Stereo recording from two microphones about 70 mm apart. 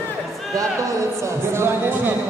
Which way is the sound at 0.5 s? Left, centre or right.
Right.